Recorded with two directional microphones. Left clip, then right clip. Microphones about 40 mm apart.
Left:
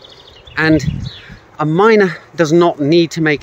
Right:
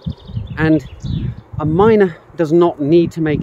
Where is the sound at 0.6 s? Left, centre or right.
Right.